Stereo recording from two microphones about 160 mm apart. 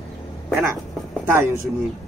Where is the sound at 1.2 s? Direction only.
15° right (ahead or behind).